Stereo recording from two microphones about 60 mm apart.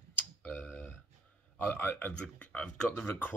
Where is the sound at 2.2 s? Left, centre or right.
Left.